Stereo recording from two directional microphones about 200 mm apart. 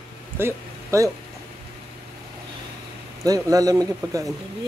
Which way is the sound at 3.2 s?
15° right (ahead or behind).